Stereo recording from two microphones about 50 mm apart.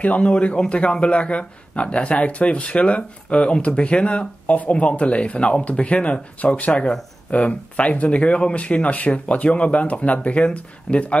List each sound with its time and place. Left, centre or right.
0.0 s speech: left